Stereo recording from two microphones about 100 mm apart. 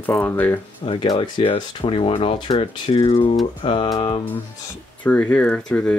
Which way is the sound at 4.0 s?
70° left (ahead or behind).